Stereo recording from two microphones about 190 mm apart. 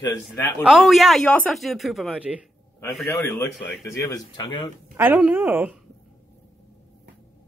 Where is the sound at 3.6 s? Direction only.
65° left (ahead or behind).